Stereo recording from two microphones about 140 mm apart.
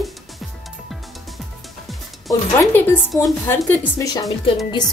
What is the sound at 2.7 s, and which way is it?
A woman's voice, 15° left (ahead or behind).